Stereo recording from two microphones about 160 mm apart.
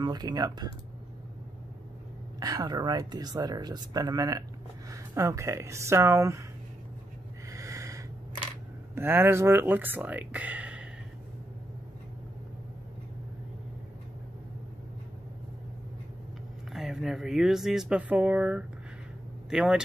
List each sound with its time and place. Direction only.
0.0 s speech: 25° right (ahead or behind)
2.4 s speech: 25° right (ahead or behind)
7.4 s snort: 20° right (ahead or behind)
8.9 s speech: 15° right (ahead or behind)
16.7 s speech: 5° right (ahead or behind)